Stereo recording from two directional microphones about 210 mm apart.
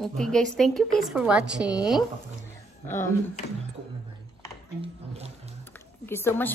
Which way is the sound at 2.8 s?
10° left (ahead or behind).